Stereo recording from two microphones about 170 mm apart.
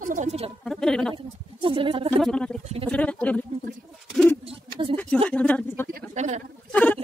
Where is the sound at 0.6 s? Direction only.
5° left (ahead or behind).